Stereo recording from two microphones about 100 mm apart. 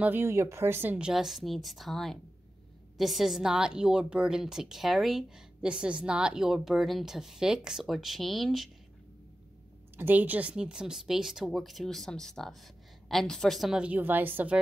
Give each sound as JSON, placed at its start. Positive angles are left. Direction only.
{"t": 0.0, "sound": "speech", "side_deg": -20}
{"t": 0.9, "sound": "a woman's voice", "side_deg": -5}
{"t": 9.9, "sound": "a woman's voice", "side_deg": -20}